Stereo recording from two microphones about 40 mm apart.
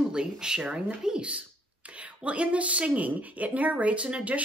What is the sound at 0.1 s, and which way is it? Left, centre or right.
Speech, right.